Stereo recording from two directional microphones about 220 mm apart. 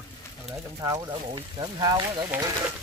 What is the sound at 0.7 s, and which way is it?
Speech, 15° right (ahead or behind).